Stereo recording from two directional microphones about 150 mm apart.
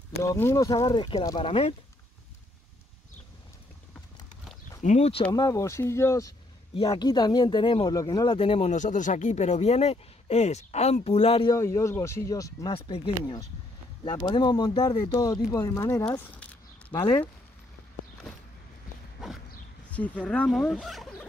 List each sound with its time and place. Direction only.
0.2 s speech: 20° left (ahead or behind)
0.8 s speech: 35° left (ahead or behind)
4.8 s speech: 45° left (ahead or behind)
5.3 s speech: 25° left (ahead or behind); by 11.4 s 40° left (ahead or behind)
11.4 s speech: 20° left (ahead or behind)
12.7 s speech: 35° left (ahead or behind)
19.9 s speech: 10° left (ahead or behind)